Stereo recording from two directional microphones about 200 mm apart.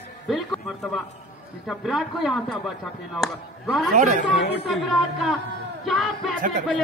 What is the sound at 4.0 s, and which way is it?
Speech, 40° right (ahead or behind).